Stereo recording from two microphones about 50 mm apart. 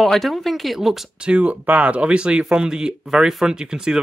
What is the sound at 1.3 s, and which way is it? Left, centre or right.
Speech, right.